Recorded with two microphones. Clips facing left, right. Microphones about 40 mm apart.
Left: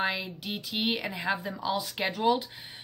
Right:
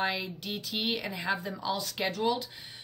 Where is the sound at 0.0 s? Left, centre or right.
Centre.